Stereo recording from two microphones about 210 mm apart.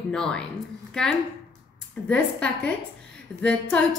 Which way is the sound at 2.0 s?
5° left (ahead or behind).